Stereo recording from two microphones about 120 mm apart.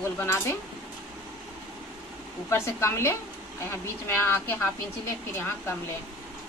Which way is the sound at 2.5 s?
20° left (ahead or behind).